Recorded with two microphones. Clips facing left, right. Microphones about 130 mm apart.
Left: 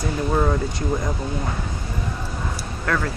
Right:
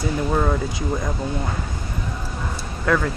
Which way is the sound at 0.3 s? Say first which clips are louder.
Left 2 dB; centre (ahead or behind).